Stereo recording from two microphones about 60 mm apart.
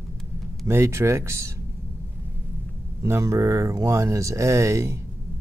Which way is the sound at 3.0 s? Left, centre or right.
Right.